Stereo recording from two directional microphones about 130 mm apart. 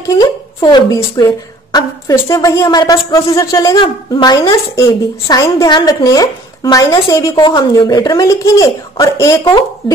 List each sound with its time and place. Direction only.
0.1 s a woman's voice: 30° left (ahead or behind)
7.3 s a woman's voice: 35° left (ahead or behind); by 9.4 s 20° left (ahead or behind)